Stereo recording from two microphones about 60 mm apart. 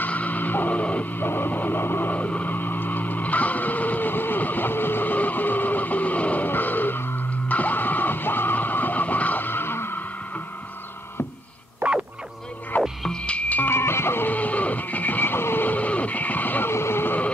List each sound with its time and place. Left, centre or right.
0.0 s music: left
1.2 s music: left
11.8 s a sound: right
13.0 s frog: centre
13.7 s music: left
16.7 s a sound: left